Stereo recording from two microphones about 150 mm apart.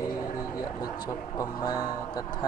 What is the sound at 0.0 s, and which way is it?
Speech, 25° left (ahead or behind).